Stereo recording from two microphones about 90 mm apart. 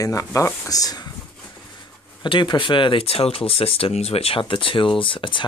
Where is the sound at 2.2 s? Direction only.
60° left (ahead or behind).